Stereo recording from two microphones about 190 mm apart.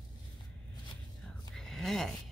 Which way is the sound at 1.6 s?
Centre (ahead or behind).